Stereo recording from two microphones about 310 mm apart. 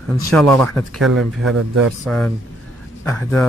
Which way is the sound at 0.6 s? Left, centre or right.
Centre.